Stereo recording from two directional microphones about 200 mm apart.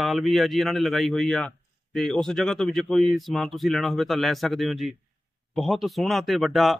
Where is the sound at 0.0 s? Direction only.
Centre (ahead or behind).